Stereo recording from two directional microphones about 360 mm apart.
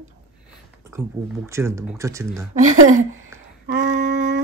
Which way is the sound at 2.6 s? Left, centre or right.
Right.